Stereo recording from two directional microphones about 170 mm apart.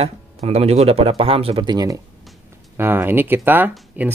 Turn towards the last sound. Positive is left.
turn(degrees=-10)  # may be behind; listen again after turning